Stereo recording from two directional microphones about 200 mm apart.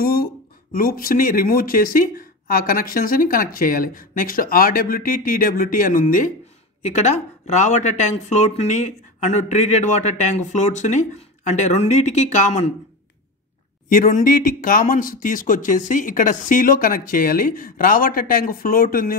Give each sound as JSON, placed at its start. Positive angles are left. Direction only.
{"t": 0.0, "sound": "a sound", "side_deg": 50}
{"t": 0.7, "sound": "speech", "side_deg": 45}
{"t": 13.8, "sound": "speech", "side_deg": 45}